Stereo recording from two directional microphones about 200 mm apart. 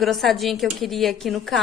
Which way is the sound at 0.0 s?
Centre (ahead or behind).